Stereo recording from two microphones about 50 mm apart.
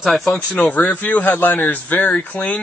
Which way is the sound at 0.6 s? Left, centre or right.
Left.